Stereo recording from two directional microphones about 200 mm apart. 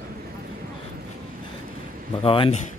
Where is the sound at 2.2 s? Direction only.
25° left (ahead or behind).